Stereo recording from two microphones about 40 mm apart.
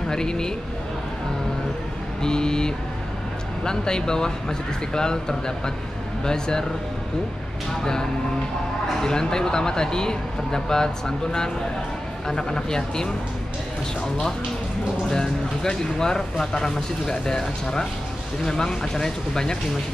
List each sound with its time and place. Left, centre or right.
0.1 s speech: centre
2.2 s speech: centre
6.2 s speech: centre
7.8 s speech: centre
15.0 s speech: centre